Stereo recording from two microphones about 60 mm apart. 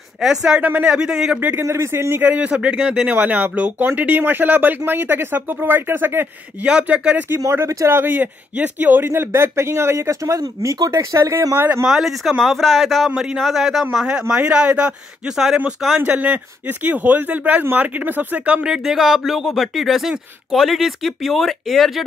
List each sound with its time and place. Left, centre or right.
0.2 s speech: centre
0.6 s speech: right
0.8 s speech: centre
1.6 s a man's voice: right
2.2 s speech: right
3.1 s speech: right
6.6 s speech: right
7.9 s speech: right
9.1 s speech: right
11.5 s speech: right
11.8 s speech: centre
13.1 s speech: centre
16.1 s speech: right; by 22.0 s centre